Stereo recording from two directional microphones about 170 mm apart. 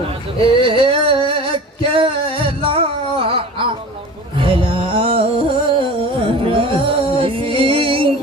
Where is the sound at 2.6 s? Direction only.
35° right (ahead or behind).